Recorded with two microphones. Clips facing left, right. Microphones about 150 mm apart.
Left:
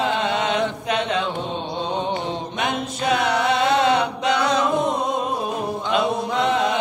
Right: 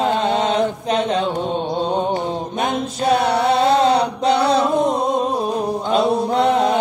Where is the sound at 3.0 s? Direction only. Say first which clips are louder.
Right 4 dB; 35° right (ahead or behind).